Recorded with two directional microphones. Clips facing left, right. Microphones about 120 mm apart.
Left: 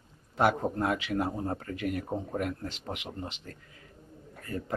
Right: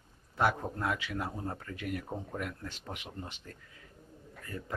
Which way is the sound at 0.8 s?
45° left (ahead or behind).